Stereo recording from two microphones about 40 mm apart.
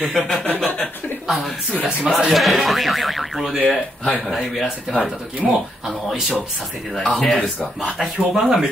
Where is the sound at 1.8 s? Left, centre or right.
Right.